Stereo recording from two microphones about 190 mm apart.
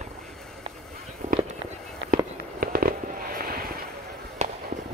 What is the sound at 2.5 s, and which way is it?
Fireworks, 50° right (ahead or behind).